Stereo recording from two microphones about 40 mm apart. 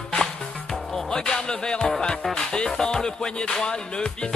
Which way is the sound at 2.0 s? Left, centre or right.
Centre.